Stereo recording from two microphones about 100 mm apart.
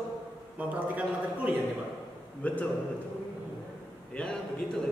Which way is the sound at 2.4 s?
15° left (ahead or behind).